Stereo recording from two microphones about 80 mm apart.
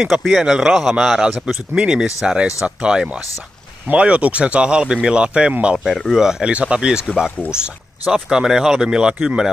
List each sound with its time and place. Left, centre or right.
0.0 s speech: centre
3.2 s speech: left
3.8 s speech: centre
5.9 s speech: centre